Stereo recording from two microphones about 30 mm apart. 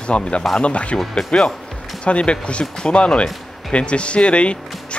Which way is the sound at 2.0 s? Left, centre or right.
Left.